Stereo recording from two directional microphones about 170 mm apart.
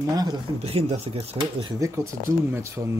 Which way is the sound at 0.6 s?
40° right (ahead or behind).